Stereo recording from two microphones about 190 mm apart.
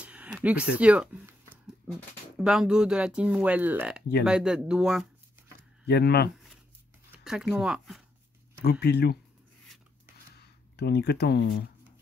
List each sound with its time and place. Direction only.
0.0 s speech: 5° right (ahead or behind)
2.3 s speech: 5° right (ahead or behind)
5.9 s speech: 60° left (ahead or behind)
7.1 s speech: 5° right (ahead or behind)
8.5 s speech: 60° left (ahead or behind)
10.8 s speech: 60° left (ahead or behind)